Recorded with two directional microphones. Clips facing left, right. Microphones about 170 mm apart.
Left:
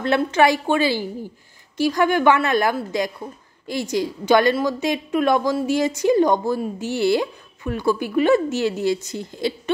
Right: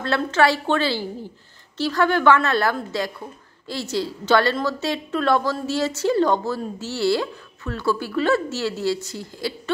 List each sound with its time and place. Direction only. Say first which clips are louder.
0.0 s a woman's voice: left 2 dB; 15° left (ahead or behind)